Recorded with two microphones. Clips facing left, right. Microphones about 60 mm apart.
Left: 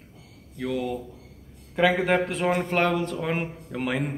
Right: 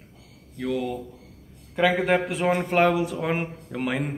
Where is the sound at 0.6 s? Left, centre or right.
Centre.